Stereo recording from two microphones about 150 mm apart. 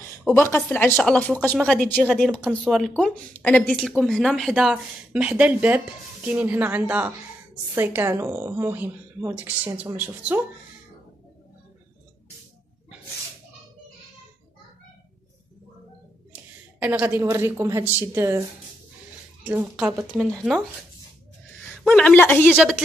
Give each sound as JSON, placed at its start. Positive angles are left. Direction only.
{"t": 0.2, "sound": "a woman's voice", "side_deg": 10}
{"t": 16.3, "sound": "a woman's voice", "side_deg": -10}
{"t": 19.4, "sound": "a woman's voice", "side_deg": -10}
{"t": 20.1, "sound": "speech", "side_deg": 0}
{"t": 21.6, "sound": "a woman's voice", "side_deg": 5}
{"t": 22.6, "sound": "speech", "side_deg": -5}